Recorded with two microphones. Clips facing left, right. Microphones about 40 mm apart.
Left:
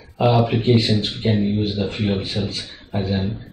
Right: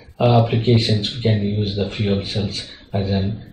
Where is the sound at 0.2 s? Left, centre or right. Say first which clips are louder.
Right 1 dB; centre.